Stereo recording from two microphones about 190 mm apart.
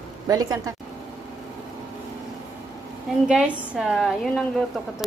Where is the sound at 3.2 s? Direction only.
5° right (ahead or behind).